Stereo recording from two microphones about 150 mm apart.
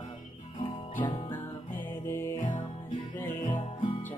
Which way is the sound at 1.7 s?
15° left (ahead or behind).